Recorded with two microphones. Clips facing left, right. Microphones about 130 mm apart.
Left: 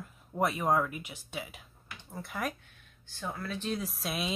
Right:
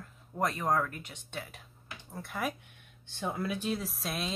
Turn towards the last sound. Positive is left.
turn(degrees=0)  # may be behind; listen again after turning